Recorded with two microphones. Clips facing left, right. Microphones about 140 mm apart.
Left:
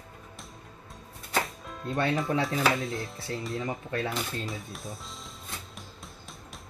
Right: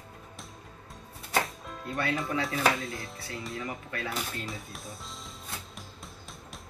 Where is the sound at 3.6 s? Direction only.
30° left (ahead or behind).